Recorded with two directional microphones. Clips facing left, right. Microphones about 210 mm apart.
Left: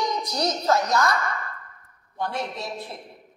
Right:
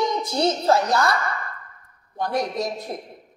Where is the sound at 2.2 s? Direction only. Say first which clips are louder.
Right 5 dB; 40° right (ahead or behind).